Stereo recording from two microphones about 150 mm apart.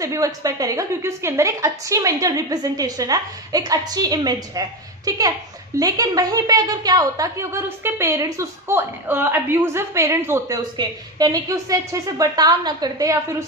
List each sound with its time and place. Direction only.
0.0 s a woman's voice: 20° right (ahead or behind)